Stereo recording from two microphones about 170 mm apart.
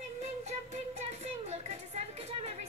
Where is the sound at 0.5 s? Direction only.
40° right (ahead or behind).